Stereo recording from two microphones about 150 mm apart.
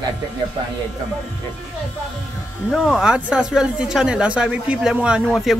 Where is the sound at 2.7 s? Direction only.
5° right (ahead or behind).